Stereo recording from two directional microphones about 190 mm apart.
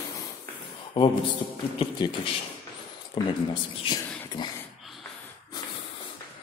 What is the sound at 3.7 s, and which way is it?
Speech, 25° left (ahead or behind).